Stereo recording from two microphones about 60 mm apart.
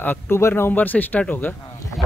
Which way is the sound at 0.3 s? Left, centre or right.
Left.